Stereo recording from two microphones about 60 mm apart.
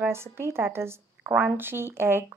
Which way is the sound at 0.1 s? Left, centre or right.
Right.